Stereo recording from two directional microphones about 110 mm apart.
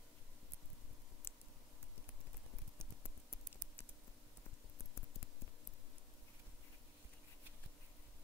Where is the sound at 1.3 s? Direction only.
20° left (ahead or behind).